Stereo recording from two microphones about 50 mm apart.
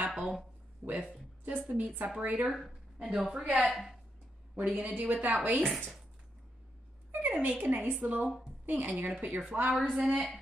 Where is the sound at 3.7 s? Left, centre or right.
Centre.